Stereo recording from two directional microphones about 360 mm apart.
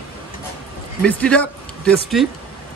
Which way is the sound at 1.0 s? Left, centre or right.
Centre.